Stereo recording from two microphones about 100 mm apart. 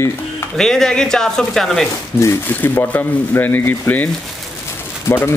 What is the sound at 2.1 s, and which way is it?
Speech, 25° left (ahead or behind).